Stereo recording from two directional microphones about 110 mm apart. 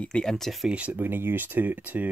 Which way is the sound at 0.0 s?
10° left (ahead or behind).